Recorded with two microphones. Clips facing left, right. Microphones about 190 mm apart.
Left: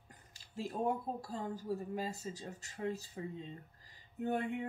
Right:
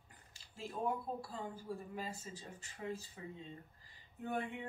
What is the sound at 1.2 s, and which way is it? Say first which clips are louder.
Speech: left 5 dB; 40° left (ahead or behind).